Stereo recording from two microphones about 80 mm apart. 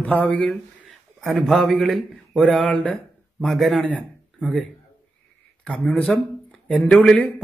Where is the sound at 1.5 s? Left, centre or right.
Centre.